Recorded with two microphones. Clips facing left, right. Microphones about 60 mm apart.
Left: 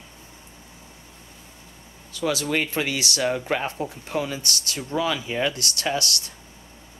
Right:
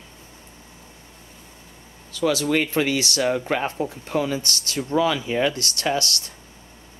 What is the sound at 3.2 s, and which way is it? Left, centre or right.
Speech, centre.